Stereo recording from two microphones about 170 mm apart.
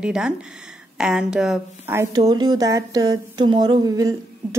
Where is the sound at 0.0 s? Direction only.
5° right (ahead or behind).